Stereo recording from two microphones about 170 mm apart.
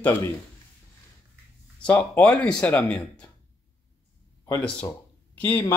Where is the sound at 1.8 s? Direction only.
10° left (ahead or behind).